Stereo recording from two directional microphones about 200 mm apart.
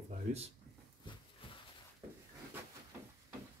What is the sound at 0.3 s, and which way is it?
Speech, 40° right (ahead or behind).